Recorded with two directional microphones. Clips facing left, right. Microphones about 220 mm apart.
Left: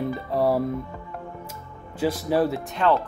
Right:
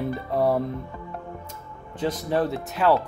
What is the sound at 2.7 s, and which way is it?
Speech, 5° right (ahead or behind).